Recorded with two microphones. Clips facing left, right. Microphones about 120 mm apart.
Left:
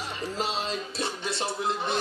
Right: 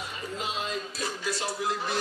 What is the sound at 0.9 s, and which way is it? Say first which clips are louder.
Music: left 1 dB; 25° left (ahead or behind).